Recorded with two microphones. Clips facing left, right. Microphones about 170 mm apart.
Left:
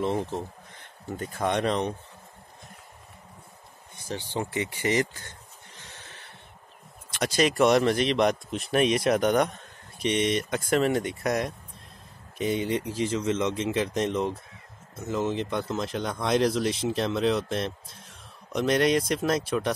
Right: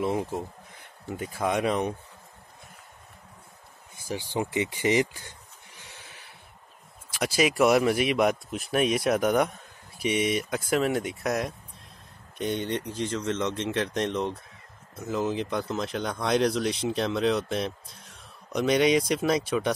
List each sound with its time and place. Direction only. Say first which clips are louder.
0.0 s speech: even; 10° right (ahead or behind)
4.1 s speech: right 2 dB; 15° right (ahead or behind)
5.8 s a sound: left 1 dB; 10° right (ahead or behind)
7.1 s speech: even; 5° right (ahead or behind)